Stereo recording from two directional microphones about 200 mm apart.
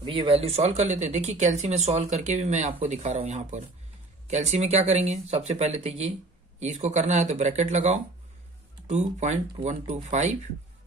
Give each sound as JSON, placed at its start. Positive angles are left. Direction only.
{"t": 0.0, "sound": "speech", "side_deg": -25}